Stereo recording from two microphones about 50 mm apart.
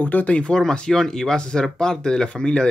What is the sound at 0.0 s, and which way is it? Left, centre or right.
Speech, left.